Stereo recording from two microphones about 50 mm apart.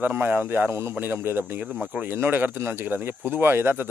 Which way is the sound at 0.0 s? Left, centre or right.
Right.